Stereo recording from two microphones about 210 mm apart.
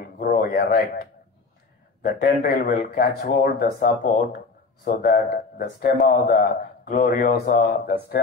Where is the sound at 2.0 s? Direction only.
45° left (ahead or behind).